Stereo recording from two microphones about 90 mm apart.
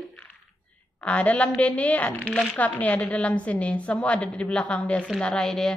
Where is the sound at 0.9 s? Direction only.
15° left (ahead or behind).